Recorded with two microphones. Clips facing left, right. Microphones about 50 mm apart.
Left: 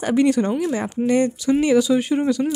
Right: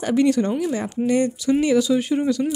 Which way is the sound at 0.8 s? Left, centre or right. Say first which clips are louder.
Left 2 dB; left.